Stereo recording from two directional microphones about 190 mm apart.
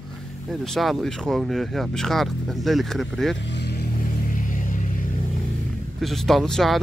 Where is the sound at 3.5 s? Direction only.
60° left (ahead or behind).